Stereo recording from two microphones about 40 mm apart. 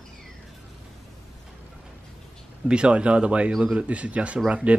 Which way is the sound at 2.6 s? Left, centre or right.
Right.